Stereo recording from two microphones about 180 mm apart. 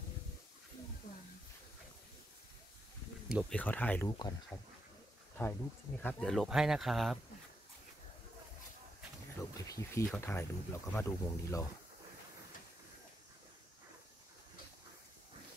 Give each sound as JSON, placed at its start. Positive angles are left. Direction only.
{"t": 3.3, "sound": "speech", "side_deg": -5}
{"t": 3.5, "sound": "speech", "side_deg": 10}
{"t": 9.4, "sound": "speech", "side_deg": 15}